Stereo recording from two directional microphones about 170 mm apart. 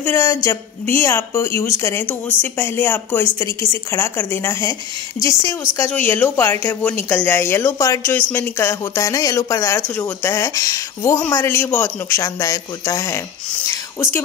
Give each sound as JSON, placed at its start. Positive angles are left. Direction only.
{"t": 0.0, "sound": "speech", "side_deg": 15}